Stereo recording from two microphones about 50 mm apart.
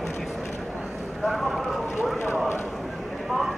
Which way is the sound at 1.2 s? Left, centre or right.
Centre.